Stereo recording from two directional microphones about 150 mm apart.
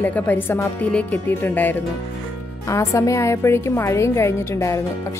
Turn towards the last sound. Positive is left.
turn(degrees=20)  # may be behind; listen again after turning